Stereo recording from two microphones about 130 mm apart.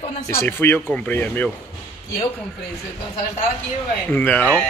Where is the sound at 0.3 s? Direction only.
20° left (ahead or behind).